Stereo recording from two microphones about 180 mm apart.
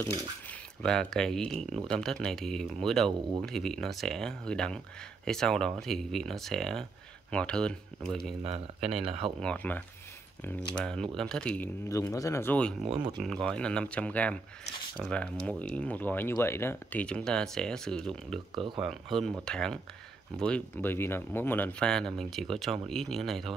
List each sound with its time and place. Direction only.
0.5 s speech: 5° left (ahead or behind)
8.4 s speech: 35° right (ahead or behind)
9.4 s speech: 5° left (ahead or behind)
18.5 s speech: 25° right (ahead or behind)
18.8 s speech: centre (ahead or behind)